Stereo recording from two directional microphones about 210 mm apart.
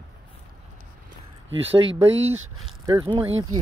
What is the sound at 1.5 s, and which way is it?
Speech, 65° right (ahead or behind).